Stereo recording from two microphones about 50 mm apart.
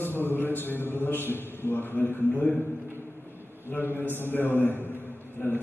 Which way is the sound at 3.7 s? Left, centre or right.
Left.